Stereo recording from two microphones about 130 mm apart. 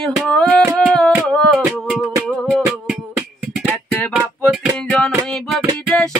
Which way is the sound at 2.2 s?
Centre (ahead or behind).